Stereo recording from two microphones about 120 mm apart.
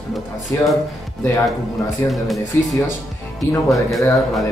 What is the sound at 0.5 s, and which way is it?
Speech, 20° left (ahead or behind).